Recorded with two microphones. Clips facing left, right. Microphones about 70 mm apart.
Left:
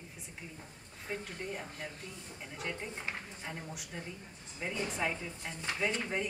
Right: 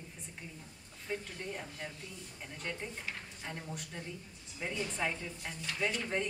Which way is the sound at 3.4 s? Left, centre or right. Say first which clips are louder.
Even; centre.